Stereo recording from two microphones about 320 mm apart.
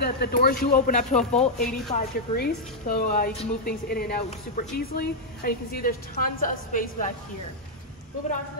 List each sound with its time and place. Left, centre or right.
0.0 s a woman's voice: left